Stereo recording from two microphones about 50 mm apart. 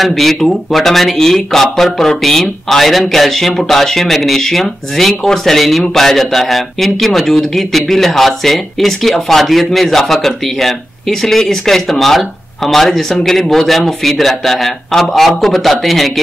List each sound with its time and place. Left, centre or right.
0.0 s speech: centre